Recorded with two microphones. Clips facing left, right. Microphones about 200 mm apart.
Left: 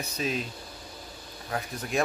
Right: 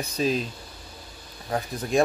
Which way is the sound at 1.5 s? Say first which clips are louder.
Right 6 dB; 30° right (ahead or behind).